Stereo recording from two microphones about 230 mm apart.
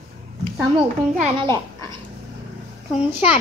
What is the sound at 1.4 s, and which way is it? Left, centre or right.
Speech, centre.